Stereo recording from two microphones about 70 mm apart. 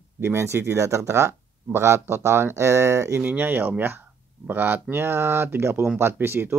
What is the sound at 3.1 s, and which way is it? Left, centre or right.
Speech, right.